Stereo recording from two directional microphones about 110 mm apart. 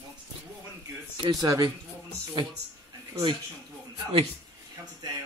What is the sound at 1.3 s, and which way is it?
Speech, 35° right (ahead or behind).